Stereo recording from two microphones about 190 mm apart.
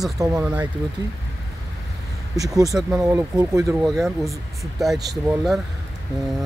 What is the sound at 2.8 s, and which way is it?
Speech, 15° right (ahead or behind).